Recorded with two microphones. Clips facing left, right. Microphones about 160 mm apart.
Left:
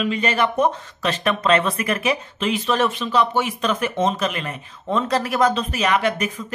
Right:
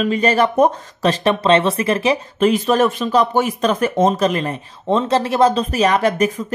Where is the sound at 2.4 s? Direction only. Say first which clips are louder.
Right 7 dB; 45° right (ahead or behind).